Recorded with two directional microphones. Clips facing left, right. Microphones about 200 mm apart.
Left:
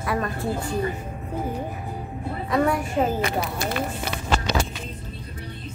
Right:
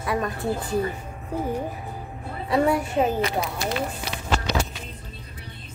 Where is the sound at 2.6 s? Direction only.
15° right (ahead or behind).